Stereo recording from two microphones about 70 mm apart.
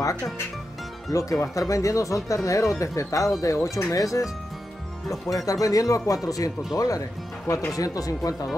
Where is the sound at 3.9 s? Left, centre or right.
Left.